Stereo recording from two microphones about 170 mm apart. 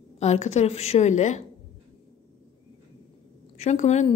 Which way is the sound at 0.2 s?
40° left (ahead or behind).